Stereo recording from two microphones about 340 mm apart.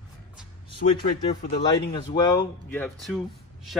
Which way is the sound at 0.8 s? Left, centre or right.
Left.